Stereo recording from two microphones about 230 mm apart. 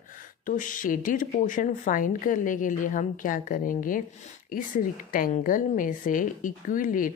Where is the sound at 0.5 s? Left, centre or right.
Left.